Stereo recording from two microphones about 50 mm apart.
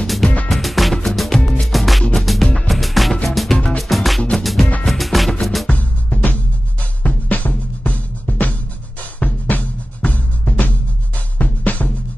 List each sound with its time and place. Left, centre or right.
0.0 s music: centre
5.7 s music: left